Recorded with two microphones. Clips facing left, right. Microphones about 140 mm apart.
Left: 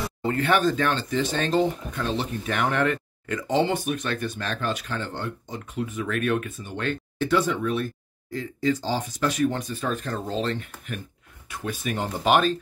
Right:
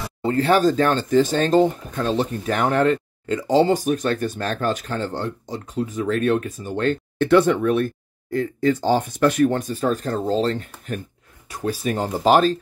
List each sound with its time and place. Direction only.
0.2 s speech: 30° right (ahead or behind)
7.2 s speech: 60° right (ahead or behind); by 12.5 s 35° right (ahead or behind)